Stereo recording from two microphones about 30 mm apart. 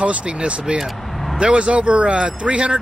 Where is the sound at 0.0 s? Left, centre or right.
Right.